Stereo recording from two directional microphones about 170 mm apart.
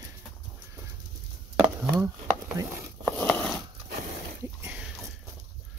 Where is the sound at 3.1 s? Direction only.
5° left (ahead or behind).